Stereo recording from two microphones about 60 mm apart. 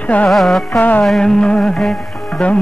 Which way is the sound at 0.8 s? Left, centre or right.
Left.